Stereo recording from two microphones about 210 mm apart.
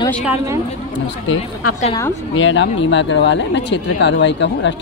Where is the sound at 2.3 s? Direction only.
65° left (ahead or behind).